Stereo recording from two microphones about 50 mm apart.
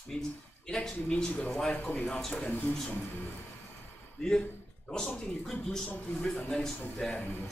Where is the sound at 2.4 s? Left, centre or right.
Left.